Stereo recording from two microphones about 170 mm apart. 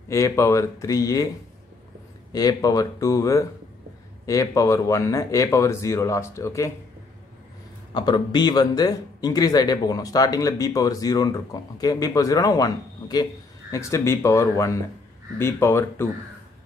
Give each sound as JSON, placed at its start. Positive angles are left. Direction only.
{"t": 0.1, "sound": "speech", "side_deg": 15}
{"t": 2.3, "sound": "a man's voice", "side_deg": 20}
{"t": 7.9, "sound": "a man's voice", "side_deg": 25}